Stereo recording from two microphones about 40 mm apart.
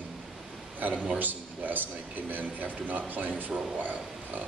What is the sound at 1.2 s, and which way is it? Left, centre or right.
A man's voice, right.